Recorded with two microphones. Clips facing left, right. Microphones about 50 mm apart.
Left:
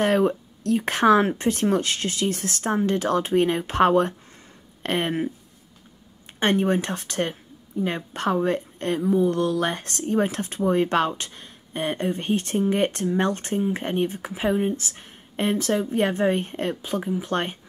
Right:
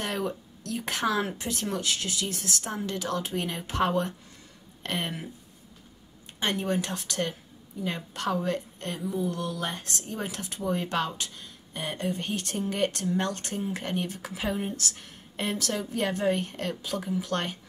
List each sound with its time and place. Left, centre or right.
0.0 s a woman's voice: left
6.4 s a woman's voice: left